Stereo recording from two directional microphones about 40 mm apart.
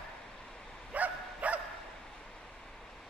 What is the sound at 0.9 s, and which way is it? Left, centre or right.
Dog, right.